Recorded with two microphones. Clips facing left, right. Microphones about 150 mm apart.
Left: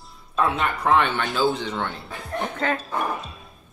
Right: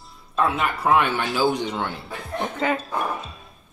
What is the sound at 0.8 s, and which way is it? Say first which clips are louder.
A woman's voice: right 1 dB; 10° right (ahead or behind).